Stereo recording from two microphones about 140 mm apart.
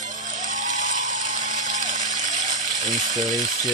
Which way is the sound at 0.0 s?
65° right (ahead or behind).